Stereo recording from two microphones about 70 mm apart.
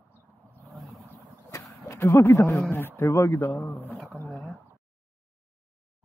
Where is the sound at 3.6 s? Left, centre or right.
Left.